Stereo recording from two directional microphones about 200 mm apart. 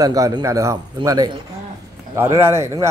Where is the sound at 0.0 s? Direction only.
20° right (ahead or behind).